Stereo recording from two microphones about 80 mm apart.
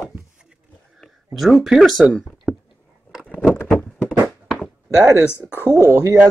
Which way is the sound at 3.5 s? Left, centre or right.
Left.